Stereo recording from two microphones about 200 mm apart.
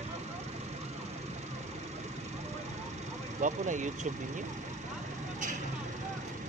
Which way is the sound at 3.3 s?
40° right (ahead or behind).